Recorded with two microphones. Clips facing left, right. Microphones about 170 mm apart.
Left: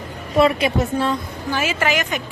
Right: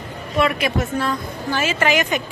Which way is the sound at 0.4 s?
30° left (ahead or behind).